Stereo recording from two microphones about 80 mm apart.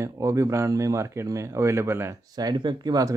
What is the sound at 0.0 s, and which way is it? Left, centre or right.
Speech, right.